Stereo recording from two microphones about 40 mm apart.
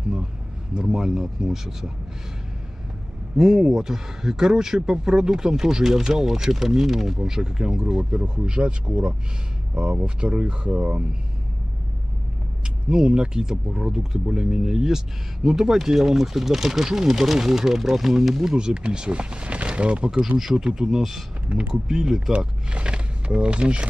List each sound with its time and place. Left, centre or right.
0.7 s speech: centre
3.3 s speech: centre
12.6 s speech: right
18.7 s speech: right
20.1 s speech: centre
21.5 s speech: right
21.8 s speech: centre
22.7 s speech: right